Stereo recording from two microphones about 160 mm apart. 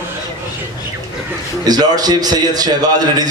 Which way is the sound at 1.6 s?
25° right (ahead or behind).